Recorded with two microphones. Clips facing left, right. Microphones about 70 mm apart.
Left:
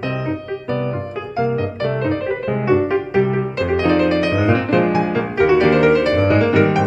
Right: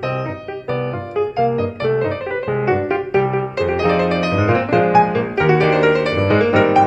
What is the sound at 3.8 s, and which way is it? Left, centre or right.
Music, right.